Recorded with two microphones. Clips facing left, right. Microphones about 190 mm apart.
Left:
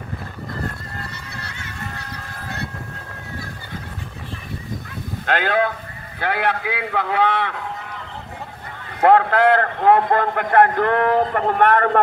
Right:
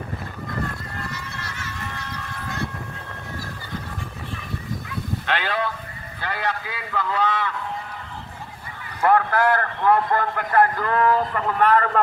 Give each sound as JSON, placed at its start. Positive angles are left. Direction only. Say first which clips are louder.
{"t": 5.2, "sound": "speech", "louder": "left 7 dB", "side_deg": 50}
{"t": 6.1, "sound": "a man's voice", "louder": "left 6 dB", "side_deg": 60}
{"t": 9.0, "sound": "a man's voice", "louder": "left 5 dB", "side_deg": 60}